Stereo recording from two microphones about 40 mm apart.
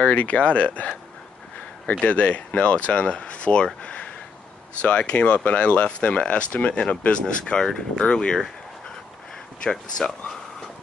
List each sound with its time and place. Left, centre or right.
0.0 s speech: left
2.0 s speech: left
3.8 s a sound: left
4.8 s speech: left
9.6 s speech: centre